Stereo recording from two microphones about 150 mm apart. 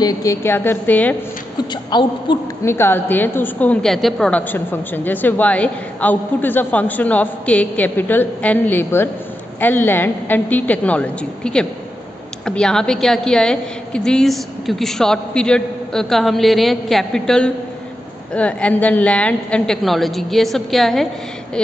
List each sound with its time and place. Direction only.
0.0 s a woman's voice: 20° left (ahead or behind)
1.7 s a woman's voice: 30° left (ahead or behind)
2.6 s a woman's voice: 15° left (ahead or behind)